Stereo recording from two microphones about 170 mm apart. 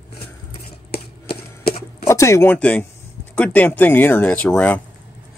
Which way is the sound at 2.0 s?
15° left (ahead or behind).